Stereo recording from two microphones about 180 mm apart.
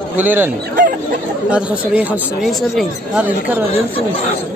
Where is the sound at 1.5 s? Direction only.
5° right (ahead or behind).